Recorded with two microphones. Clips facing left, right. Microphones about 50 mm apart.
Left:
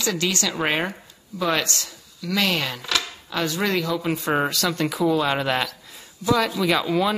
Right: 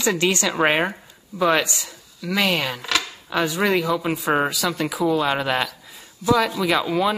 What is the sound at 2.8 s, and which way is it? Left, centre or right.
Speech, right.